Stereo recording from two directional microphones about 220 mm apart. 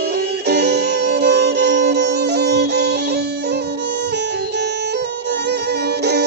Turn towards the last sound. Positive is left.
turn(degrees=-50)  # may be behind; listen again after turning